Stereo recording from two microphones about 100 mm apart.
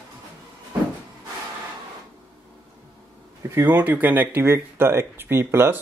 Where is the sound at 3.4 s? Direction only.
30° right (ahead or behind).